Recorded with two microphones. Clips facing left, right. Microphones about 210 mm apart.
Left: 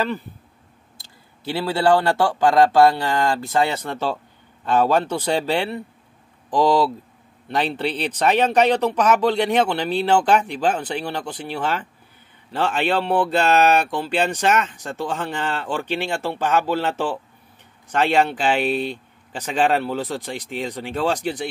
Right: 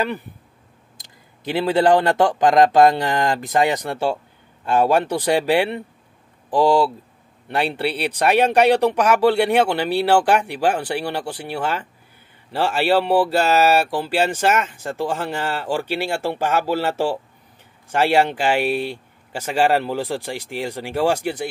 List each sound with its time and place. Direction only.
0.0 s speech: 15° right (ahead or behind)
7.4 s speech: 10° right (ahead or behind)